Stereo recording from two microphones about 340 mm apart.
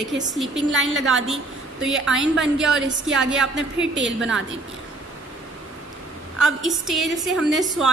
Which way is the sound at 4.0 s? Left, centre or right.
Right.